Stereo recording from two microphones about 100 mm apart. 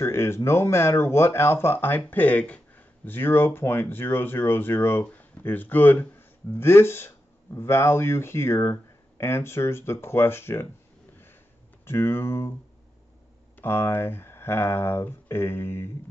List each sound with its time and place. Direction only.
0.0 s speech: 25° left (ahead or behind)
11.8 s speech: 25° left (ahead or behind)
13.6 s speech: 25° left (ahead or behind)